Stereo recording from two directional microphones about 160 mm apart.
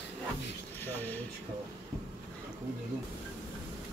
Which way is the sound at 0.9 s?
10° left (ahead or behind).